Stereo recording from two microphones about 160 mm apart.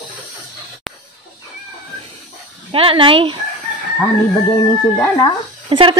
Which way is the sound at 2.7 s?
35° right (ahead or behind).